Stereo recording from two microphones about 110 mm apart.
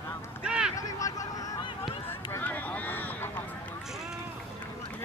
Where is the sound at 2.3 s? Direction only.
15° left (ahead or behind).